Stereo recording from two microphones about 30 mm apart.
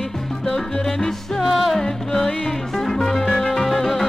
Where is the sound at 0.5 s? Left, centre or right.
Centre.